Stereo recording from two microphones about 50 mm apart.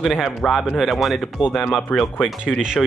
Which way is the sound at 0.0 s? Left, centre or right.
Centre.